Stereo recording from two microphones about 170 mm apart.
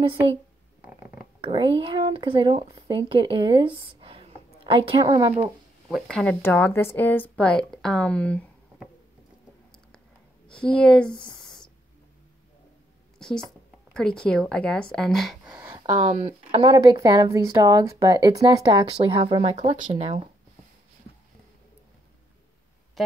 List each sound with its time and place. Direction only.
1.4 s a woman's voice: 30° right (ahead or behind)
5.3 s speech: 5° right (ahead or behind)
6.0 s a woman's voice: 5° left (ahead or behind)
10.5 s speech: 5° left (ahead or behind)
11.1 s speech: 25° left (ahead or behind)
13.2 s speech: 5° left (ahead or behind)
15.9 s speech: 35° right (ahead or behind)
16.7 s a woman's voice: 25° right (ahead or behind)
23.0 s speech: centre (ahead or behind)